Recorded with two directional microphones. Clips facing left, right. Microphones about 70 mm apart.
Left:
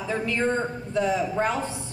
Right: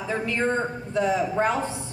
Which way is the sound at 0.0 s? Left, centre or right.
Right.